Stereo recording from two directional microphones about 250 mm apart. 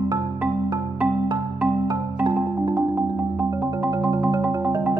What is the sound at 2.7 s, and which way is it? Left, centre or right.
Marimba, centre.